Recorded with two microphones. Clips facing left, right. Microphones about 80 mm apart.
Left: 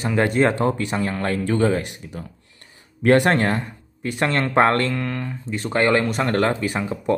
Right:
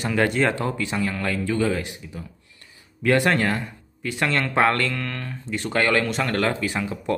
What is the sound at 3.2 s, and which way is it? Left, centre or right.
Speech, left.